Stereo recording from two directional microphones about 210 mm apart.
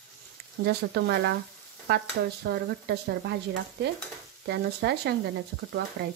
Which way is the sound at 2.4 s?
50° right (ahead or behind).